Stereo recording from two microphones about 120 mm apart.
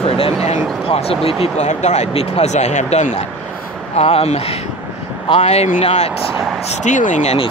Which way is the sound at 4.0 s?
60° left (ahead or behind).